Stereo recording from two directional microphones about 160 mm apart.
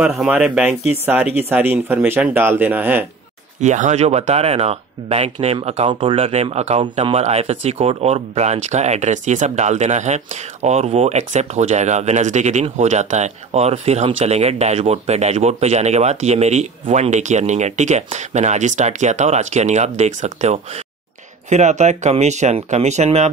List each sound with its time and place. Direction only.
0.0 s speech: 5° right (ahead or behind)
3.6 s speech: 50° right (ahead or behind)